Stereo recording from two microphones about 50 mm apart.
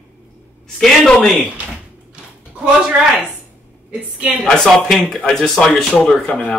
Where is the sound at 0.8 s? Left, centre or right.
Centre.